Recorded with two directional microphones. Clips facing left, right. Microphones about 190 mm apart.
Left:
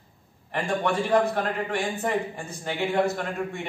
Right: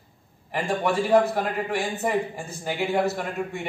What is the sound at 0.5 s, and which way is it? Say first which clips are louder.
A man's voice: right 1 dB; 5° right (ahead or behind).